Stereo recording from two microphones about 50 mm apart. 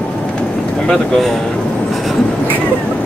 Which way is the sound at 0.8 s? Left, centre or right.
Centre.